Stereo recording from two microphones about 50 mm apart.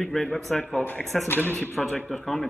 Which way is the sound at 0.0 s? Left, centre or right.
Centre.